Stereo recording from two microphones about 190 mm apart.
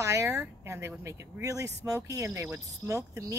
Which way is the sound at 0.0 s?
15° right (ahead or behind).